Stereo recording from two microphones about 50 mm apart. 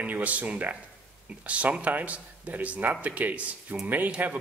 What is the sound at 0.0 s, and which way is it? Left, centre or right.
Speech, right.